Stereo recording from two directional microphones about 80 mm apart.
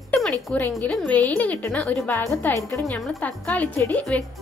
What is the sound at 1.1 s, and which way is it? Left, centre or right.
A woman's voice, centre.